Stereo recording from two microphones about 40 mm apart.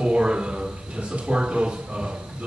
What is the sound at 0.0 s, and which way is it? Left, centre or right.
Speech, right.